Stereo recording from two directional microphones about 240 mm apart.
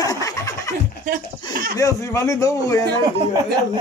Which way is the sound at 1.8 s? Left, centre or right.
Centre.